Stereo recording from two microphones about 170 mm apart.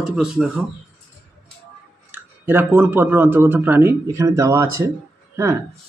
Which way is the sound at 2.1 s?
10° right (ahead or behind).